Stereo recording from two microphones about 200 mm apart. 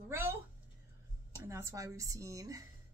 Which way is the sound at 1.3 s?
15° right (ahead or behind).